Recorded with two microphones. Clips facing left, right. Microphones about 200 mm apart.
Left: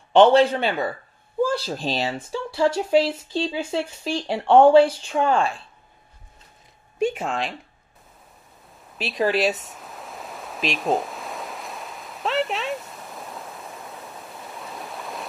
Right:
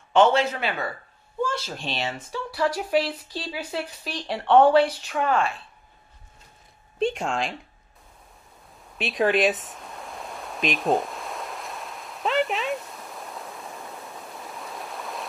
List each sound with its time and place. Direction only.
0.1 s speech: 35° left (ahead or behind)
7.0 s speech: 5° left (ahead or behind)
8.9 s pink noise: centre (ahead or behind)
13.8 s stream: centre (ahead or behind)